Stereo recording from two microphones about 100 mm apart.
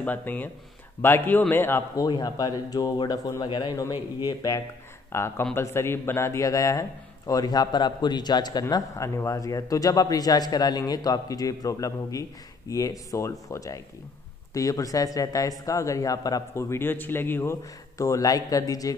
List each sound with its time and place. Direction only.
0.0 s speech: 20° left (ahead or behind)
2.0 s a man's voice: 40° left (ahead or behind)
4.3 s speech: 35° left (ahead or behind)
5.1 s speech: 25° left (ahead or behind)